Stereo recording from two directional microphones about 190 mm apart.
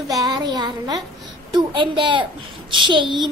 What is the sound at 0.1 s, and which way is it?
A woman's voice, 20° right (ahead or behind).